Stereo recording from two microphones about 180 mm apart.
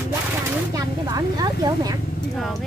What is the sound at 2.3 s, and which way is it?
Speech, centre (ahead or behind).